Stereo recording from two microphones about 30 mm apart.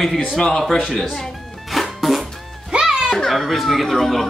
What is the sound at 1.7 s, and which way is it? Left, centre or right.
Music, centre.